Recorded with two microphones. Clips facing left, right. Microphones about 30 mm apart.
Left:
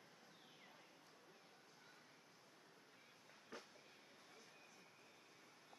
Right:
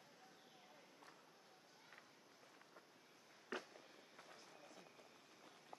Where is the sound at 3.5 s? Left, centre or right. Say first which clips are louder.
Right 8 dB; right.